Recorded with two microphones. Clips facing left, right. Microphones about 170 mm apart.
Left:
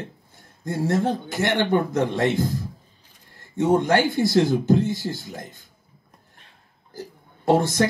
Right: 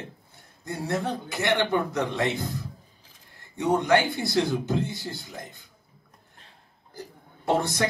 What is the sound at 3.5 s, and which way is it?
Speech, 50° left (ahead or behind).